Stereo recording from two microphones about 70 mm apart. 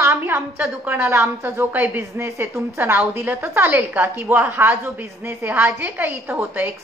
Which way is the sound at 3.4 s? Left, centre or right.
Right.